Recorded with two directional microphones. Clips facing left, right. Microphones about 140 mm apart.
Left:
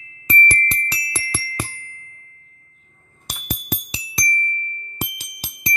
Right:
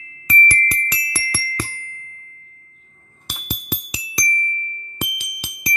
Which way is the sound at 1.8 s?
30° left (ahead or behind).